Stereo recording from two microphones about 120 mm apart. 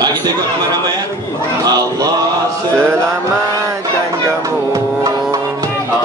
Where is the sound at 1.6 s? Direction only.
30° right (ahead or behind).